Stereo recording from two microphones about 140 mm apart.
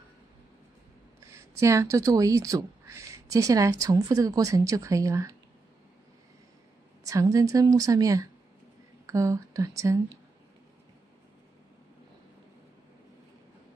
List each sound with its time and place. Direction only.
1.3 s speech: 20° right (ahead or behind)
7.1 s speech: 25° right (ahead or behind)